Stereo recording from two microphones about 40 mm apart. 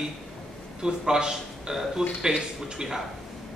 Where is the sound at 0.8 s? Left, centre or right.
Centre.